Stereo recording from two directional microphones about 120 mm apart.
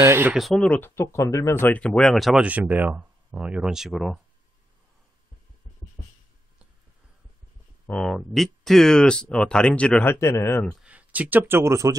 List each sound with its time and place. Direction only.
0.0 s speech: 20° right (ahead or behind)
0.3 s speech: centre (ahead or behind)
0.7 s speech: 15° left (ahead or behind)
1.0 s speech: 25° left (ahead or behind); by 2.4 s centre (ahead or behind)
2.4 s speech: 15° right (ahead or behind)
7.8 s speech: 5° left (ahead or behind)
10.1 s speech: 20° left (ahead or behind)
10.8 s speech: 10° right (ahead or behind)